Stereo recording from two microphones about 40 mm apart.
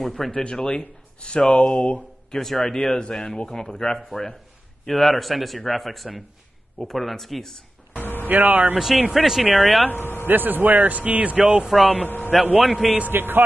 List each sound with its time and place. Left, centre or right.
0.0 s speech: centre
0.4 s speech: centre
2.0 s speech: centre
8.0 s vehicle: left
8.3 s speech: right
8.7 s speech: centre
9.8 s speech: left
10.2 s speech: right
12.5 s speech: centre
13.1 s a man's voice: right